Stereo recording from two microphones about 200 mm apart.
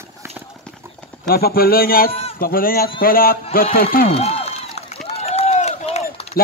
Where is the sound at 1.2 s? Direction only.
50° left (ahead or behind).